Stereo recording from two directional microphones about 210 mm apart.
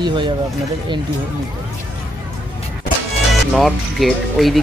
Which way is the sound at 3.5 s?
Centre (ahead or behind).